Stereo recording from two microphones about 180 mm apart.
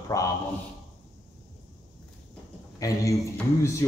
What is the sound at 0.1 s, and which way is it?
Speech, 15° left (ahead or behind).